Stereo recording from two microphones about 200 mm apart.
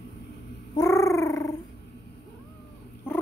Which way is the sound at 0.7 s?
15° left (ahead or behind).